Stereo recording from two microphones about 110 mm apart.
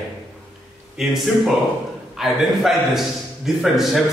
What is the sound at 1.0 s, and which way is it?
A man's voice, 5° right (ahead or behind).